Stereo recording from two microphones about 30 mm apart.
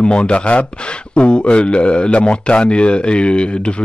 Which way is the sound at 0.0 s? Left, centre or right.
Left.